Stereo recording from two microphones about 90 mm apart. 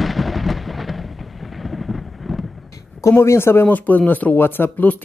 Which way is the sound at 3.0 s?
30° left (ahead or behind).